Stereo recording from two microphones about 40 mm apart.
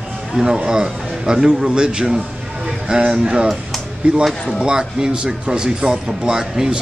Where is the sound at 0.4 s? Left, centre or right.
Centre.